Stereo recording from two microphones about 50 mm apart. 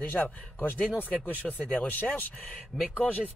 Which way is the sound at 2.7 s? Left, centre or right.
Left.